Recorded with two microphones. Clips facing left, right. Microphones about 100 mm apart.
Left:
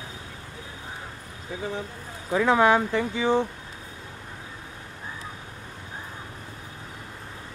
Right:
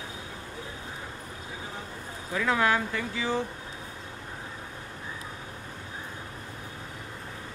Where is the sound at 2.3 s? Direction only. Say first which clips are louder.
Left 6 dB; 25° left (ahead or behind).